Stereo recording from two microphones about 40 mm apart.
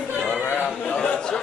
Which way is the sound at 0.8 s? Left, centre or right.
Left.